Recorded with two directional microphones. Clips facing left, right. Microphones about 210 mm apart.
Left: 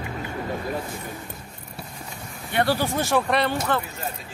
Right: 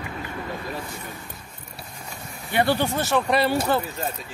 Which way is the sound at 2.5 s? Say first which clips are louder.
Right 1 dB; centre (ahead or behind).